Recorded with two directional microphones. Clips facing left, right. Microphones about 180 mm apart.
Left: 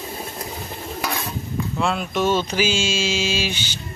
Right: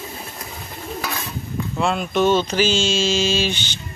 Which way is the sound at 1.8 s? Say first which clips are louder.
Right 3 dB; centre (ahead or behind).